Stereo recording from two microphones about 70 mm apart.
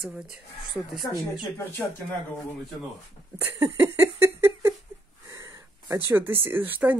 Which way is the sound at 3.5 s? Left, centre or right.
Right.